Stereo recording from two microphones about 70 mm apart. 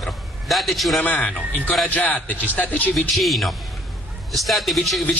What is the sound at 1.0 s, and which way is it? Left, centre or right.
A man's voice, left.